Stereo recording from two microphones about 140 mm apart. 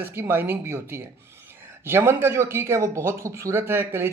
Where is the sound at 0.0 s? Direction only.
15° right (ahead or behind).